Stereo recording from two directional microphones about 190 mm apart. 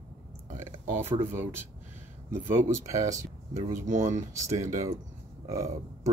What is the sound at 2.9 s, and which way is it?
Speech, 15° right (ahead or behind).